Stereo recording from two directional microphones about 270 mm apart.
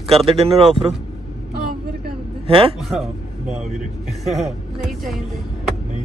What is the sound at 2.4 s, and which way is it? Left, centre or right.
Speech, right.